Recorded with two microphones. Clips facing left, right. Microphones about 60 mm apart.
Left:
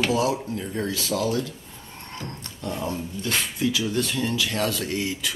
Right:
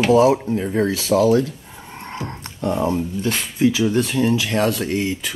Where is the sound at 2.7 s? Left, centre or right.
Right.